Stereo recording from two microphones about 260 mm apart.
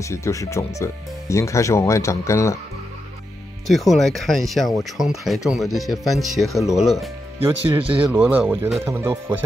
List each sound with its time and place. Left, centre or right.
0.0 s speech: centre
3.6 s speech: centre
7.3 s speech: right
8.0 s speech: centre